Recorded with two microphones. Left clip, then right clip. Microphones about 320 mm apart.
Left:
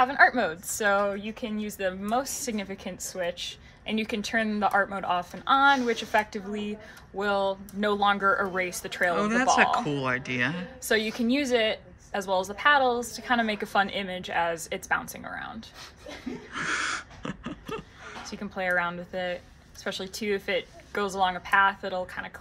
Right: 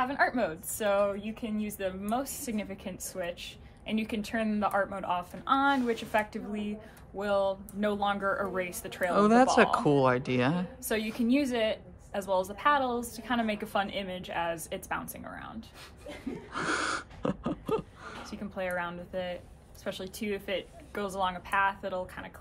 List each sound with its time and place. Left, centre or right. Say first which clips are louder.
0.1 s a woman's voice: left 7 dB; left
9.8 s speech: right 3 dB; centre
10.9 s a woman's voice: left 5 dB; left
16.6 s a sound: left 2 dB; centre
18.3 s a woman's voice: left 7 dB; left